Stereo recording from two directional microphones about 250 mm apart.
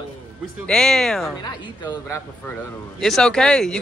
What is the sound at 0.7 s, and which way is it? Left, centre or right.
Speech, centre.